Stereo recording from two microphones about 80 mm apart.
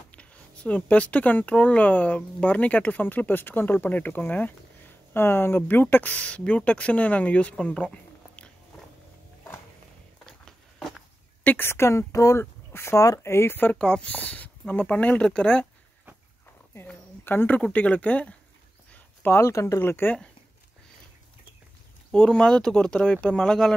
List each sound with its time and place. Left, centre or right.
0.1 s speech: centre
10.4 s a sound: centre
11.4 s speech: left
13.7 s speech: centre
17.2 s speech: left
18.9 s a sound: left
19.3 s speech: left
22.1 s speech: centre